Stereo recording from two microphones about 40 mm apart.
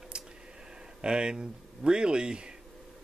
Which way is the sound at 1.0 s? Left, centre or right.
Right.